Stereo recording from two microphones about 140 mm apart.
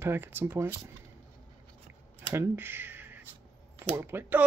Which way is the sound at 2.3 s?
20° right (ahead or behind).